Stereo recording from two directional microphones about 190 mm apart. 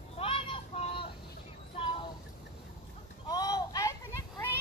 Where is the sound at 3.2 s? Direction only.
20° left (ahead or behind).